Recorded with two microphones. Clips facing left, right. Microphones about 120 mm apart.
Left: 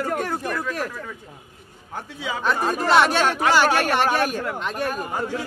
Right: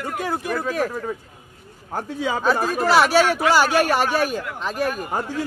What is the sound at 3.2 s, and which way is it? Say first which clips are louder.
Speech: right 2 dB; 40° left (ahead or behind).